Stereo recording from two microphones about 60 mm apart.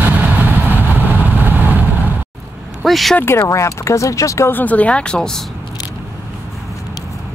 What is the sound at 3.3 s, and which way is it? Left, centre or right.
Speech, left.